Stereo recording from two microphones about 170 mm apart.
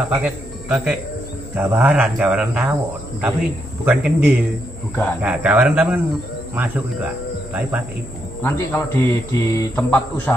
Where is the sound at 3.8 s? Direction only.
5° right (ahead or behind).